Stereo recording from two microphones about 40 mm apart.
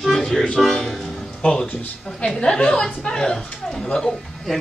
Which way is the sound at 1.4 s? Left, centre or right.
Left.